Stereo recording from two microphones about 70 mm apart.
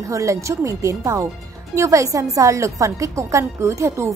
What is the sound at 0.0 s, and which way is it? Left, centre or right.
A woman's voice, right.